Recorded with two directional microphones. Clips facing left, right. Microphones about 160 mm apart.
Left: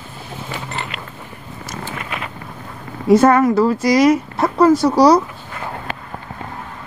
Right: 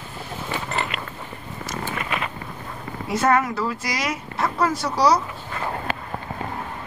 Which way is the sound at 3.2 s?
40° left (ahead or behind).